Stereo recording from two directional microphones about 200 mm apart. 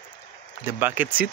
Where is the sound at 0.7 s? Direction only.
10° right (ahead or behind).